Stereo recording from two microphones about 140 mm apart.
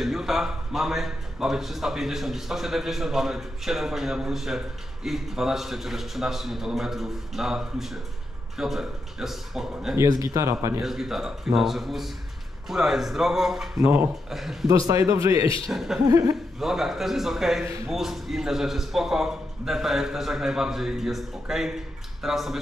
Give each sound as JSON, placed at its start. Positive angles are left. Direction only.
{"t": 0.0, "sound": "a man's voice", "side_deg": 0}
{"t": 9.9, "sound": "speech", "side_deg": -25}
{"t": 10.8, "sound": "a man's voice", "side_deg": -5}
{"t": 14.7, "sound": "speech", "side_deg": -25}
{"t": 15.6, "sound": "a man's voice", "side_deg": 0}